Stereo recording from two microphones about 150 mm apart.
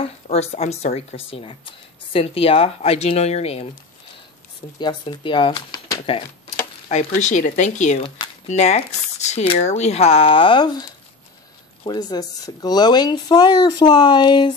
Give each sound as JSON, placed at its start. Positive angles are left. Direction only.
{"t": 0.0, "sound": "speech", "side_deg": 45}
{"t": 4.7, "sound": "speech", "side_deg": 30}
{"t": 7.2, "sound": "speech", "side_deg": 55}